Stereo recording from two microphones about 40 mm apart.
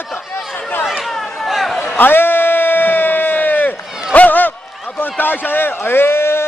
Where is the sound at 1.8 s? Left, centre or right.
Left.